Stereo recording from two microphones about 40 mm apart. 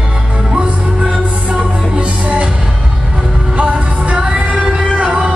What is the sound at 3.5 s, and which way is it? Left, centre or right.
Music, right.